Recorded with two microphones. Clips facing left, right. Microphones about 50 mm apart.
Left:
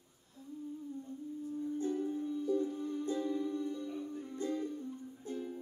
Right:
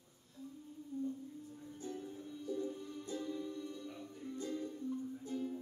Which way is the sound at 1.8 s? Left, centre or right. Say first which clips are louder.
Left 9 dB; left.